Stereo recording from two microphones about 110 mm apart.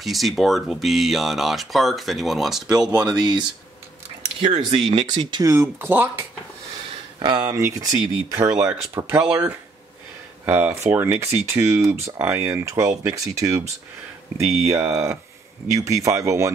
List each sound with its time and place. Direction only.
0.0 s speech: centre (ahead or behind)
4.4 s speech: 50° right (ahead or behind)
5.1 s speech: 40° right (ahead or behind)
5.5 s speech: 25° right (ahead or behind)
7.2 s speech: 45° right (ahead or behind); by 16.5 s 25° right (ahead or behind)